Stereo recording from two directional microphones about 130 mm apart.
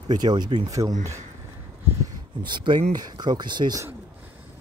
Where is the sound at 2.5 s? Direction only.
35° right (ahead or behind).